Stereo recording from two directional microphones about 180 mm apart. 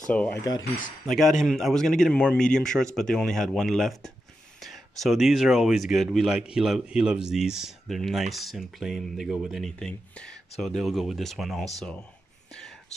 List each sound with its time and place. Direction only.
0.4 s speech: 20° left (ahead or behind)
1.0 s speech: centre (ahead or behind)